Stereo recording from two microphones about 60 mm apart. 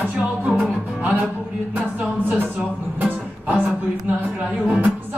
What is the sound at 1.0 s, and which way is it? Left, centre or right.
Music, right.